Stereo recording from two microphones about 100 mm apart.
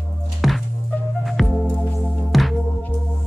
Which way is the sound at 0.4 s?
Centre (ahead or behind).